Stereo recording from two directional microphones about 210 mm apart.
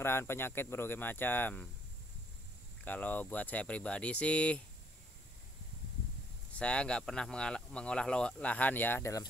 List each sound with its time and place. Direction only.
0.0 s speech: 10° left (ahead or behind)
2.8 s speech: 10° left (ahead or behind)
6.5 s speech: 5° left (ahead or behind)